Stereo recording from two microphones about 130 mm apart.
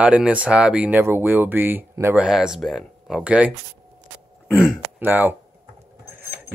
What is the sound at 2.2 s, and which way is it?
Speech, 5° right (ahead or behind).